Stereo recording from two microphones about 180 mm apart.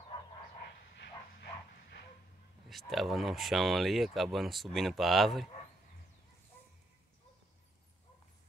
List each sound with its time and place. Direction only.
0.9 s bow-wow: 65° left (ahead or behind)
2.7 s speech: centre (ahead or behind)